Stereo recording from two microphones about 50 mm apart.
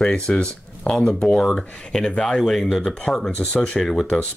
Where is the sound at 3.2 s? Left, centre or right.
Left.